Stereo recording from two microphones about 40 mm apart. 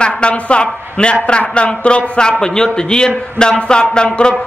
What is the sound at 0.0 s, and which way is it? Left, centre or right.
A man's voice, left.